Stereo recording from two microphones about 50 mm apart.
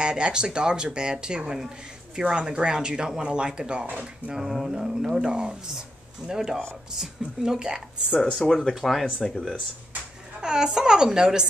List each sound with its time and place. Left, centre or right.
0.0 s speech: centre
4.4 s a sound: centre
4.6 s speech: centre
8.2 s speech: centre
8.7 s a sound: centre
10.4 s speech: centre